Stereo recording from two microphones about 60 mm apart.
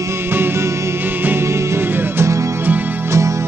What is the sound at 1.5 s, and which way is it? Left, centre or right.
Music, right.